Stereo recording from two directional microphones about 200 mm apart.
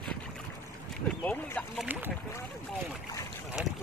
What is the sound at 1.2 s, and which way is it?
Speech, 10° left (ahead or behind).